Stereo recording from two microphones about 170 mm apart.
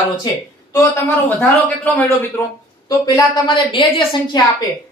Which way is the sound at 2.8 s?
20° left (ahead or behind).